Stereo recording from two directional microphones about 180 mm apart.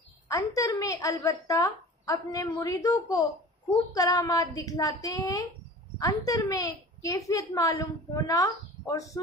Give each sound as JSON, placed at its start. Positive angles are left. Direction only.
{"t": 0.3, "sound": "a woman's voice", "side_deg": 20}